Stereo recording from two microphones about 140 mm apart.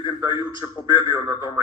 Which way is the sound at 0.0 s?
30° left (ahead or behind).